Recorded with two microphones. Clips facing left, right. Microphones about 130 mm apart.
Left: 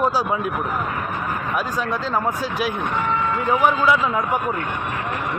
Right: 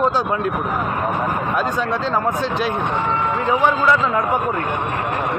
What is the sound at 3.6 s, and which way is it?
Speech, 10° left (ahead or behind).